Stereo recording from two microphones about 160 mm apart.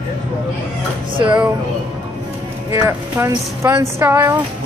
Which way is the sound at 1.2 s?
10° right (ahead or behind).